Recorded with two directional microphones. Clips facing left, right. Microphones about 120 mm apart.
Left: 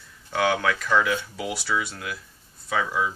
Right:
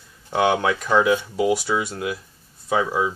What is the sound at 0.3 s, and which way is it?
Speech, 25° right (ahead or behind).